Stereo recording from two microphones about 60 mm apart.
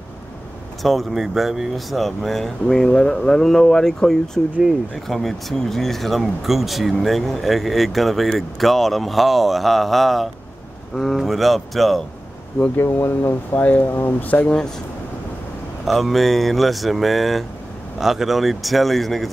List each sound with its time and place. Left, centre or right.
0.8 s speech: centre
12.7 s speech: left
13.6 s speech: left
14.3 s speech: centre
15.8 s speech: centre